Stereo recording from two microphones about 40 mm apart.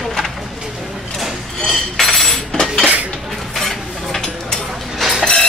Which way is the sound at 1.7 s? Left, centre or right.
Centre.